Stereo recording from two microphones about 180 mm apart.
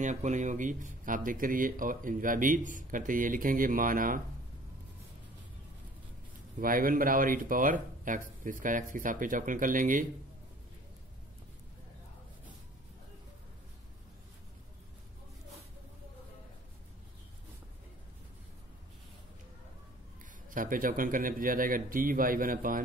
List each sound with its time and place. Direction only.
0.0 s a man's voice: 45° right (ahead or behind)
6.6 s a man's voice: 50° right (ahead or behind)
20.4 s a man's voice: 50° right (ahead or behind)